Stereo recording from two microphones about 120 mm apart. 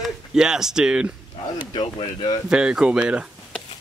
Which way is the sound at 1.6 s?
40° left (ahead or behind).